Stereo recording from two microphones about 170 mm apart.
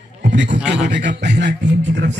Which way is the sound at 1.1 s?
90° right.